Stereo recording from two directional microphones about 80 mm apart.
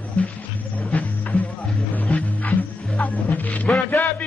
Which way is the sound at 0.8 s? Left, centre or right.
Centre.